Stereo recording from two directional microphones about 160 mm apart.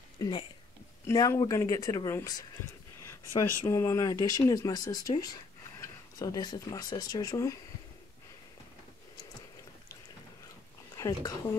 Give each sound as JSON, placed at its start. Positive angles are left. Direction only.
{"t": 0.2, "sound": "speech", "side_deg": 30}
{"t": 1.0, "sound": "speech", "side_deg": 20}
{"t": 11.0, "sound": "a woman's voice", "side_deg": 25}